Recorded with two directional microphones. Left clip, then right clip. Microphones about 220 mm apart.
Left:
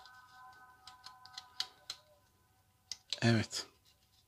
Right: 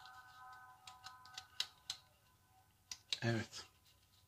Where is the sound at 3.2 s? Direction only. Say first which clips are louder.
Left 12 dB; 45° left (ahead or behind).